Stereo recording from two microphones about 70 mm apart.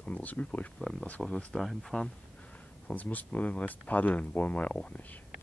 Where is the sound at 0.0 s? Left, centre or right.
Left.